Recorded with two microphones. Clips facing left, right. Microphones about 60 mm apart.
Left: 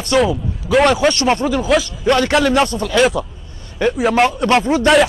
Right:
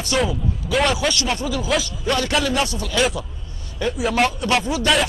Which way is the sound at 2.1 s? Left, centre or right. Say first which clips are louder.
Left 7 dB; left.